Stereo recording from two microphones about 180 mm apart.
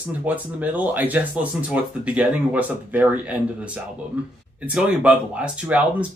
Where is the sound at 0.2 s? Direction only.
10° right (ahead or behind).